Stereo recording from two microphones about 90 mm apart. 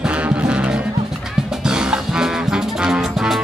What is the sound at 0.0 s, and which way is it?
Music, 15° right (ahead or behind).